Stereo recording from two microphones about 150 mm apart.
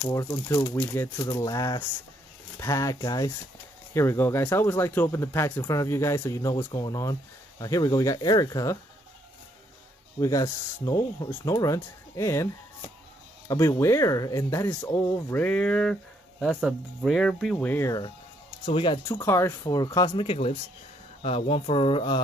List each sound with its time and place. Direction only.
0.0 s speech: 20° left (ahead or behind)
10.2 s speech: 20° left (ahead or behind)
13.5 s speech: 20° left (ahead or behind)
18.7 s speech: 35° left (ahead or behind)
19.2 s speech: 15° left (ahead or behind)
20.2 s speech: 40° left (ahead or behind)